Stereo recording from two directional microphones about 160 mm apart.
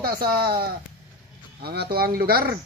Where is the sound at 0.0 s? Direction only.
70° right (ahead or behind).